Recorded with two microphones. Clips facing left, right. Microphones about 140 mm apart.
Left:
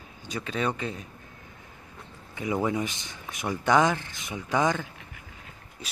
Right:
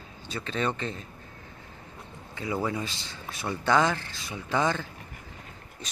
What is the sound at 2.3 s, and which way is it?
Speech, 20° left (ahead or behind).